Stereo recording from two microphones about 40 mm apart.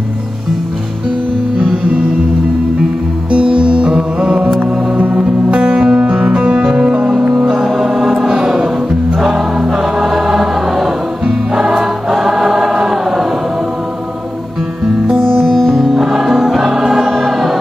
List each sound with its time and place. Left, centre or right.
3.3 s music: right
8.3 s choir: centre
11.2 s music: centre
12.7 s choir: centre
15.0 s music: centre
15.5 s music: centre